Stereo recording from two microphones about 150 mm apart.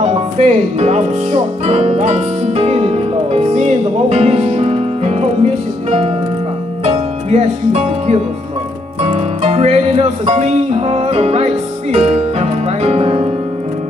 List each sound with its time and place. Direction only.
0.0 s speech: 45° right (ahead or behind)
9.0 s music: 40° right (ahead or behind)